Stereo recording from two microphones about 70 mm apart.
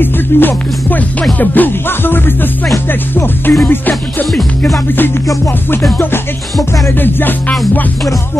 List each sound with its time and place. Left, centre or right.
0.0 s music: left
7.0 s music: left